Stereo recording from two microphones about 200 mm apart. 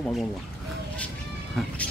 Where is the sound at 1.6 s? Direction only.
Centre (ahead or behind).